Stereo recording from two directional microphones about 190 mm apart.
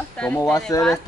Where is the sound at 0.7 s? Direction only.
20° left (ahead or behind).